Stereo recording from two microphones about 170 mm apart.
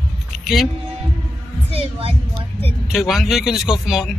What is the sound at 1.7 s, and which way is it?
Speech, 35° right (ahead or behind).